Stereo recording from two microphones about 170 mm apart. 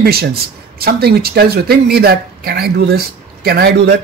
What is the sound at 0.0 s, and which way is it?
Speech, 65° right (ahead or behind).